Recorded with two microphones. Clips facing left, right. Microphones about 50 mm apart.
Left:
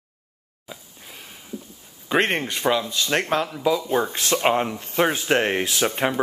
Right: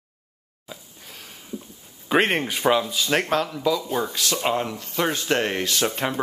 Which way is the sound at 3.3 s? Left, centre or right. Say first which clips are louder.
Left 1 dB; centre.